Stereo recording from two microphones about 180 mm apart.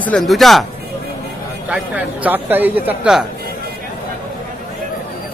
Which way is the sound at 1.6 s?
10° right (ahead or behind).